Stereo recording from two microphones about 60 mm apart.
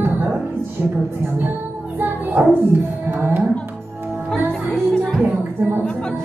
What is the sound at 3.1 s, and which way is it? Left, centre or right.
Music, right.